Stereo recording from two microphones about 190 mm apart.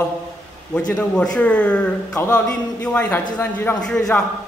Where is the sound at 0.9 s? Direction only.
5° left (ahead or behind).